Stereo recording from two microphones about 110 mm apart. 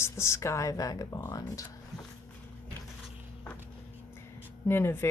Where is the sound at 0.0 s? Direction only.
25° left (ahead or behind).